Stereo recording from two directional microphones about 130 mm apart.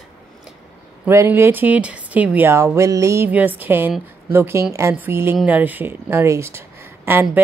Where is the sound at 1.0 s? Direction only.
20° right (ahead or behind).